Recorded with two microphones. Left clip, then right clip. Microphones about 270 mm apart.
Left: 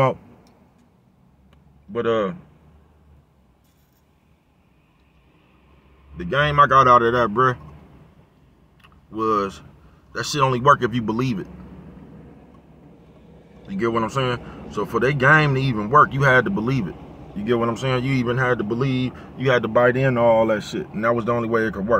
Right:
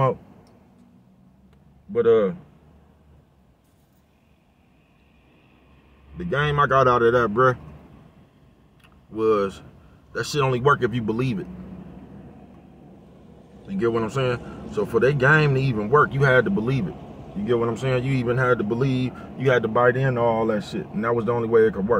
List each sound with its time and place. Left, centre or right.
1.9 s a man's voice: centre
6.1 s a man's voice: centre
8.8 s clicking: centre
10.1 s a man's voice: centre
13.7 s a man's voice: centre
17.0 s a sound: right
17.5 s a man's voice: centre